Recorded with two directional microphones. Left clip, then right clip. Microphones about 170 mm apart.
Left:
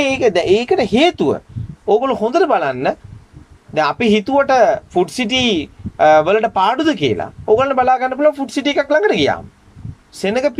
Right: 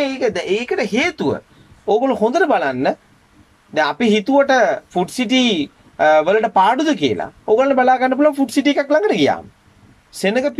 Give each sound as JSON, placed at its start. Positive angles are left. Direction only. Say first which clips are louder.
{"t": 0.0, "sound": "speech", "louder": "left 5 dB", "side_deg": 20}
{"t": 1.9, "sound": "speech", "louder": "left 1 dB", "side_deg": 0}